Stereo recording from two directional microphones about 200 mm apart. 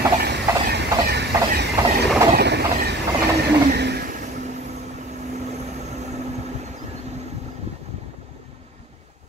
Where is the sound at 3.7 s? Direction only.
55° right (ahead or behind).